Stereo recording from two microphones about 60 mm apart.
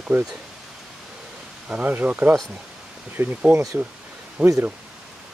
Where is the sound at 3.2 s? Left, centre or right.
Right.